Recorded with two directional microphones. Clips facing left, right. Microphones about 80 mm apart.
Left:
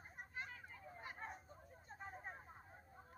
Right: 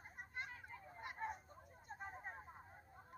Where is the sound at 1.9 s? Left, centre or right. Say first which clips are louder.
Right 1 dB; centre.